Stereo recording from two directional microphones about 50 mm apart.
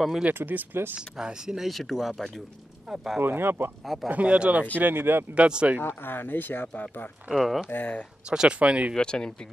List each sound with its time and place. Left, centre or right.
0.3 s speech: right
0.9 s speech: centre
1.7 s speech: centre
3.2 s speech: right
3.8 s speech: centre
4.1 s speech: right
4.7 s speech: right
5.3 s speech: right
5.9 s speech: left
7.3 s speech: centre
7.7 s speech: left
8.3 s speech: right
8.9 s speech: centre